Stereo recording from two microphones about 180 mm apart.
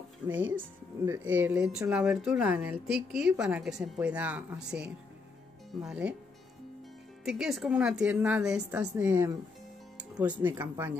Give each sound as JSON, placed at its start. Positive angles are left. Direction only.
{"t": 0.3, "sound": "a woman's voice", "side_deg": -10}
{"t": 7.2, "sound": "a woman's voice", "side_deg": 0}